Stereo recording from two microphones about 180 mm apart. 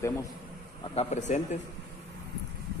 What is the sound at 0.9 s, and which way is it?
Speech, 40° left (ahead or behind).